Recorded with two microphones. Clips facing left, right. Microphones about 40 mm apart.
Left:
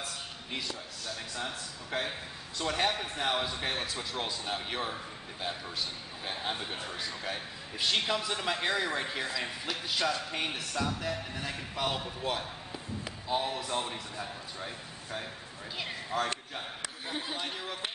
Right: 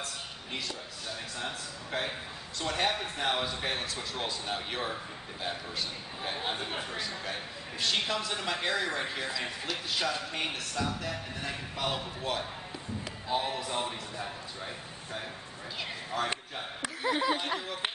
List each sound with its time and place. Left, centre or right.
0.0 s a sound: centre
1.0 s a man's voice: centre
7.8 s a man's voice: centre
15.8 s a man's voice: centre
17.0 s speech: right